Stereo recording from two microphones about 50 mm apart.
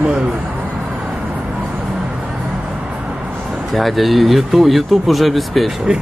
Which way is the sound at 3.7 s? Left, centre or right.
Centre.